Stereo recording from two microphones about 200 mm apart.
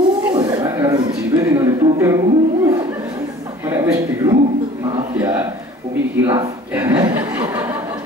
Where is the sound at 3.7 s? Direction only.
15° right (ahead or behind).